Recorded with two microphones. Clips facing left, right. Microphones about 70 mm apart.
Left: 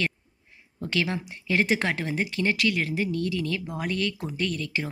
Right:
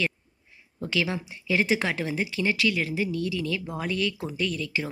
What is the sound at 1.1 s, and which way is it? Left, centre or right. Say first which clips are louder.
Speech: even; left.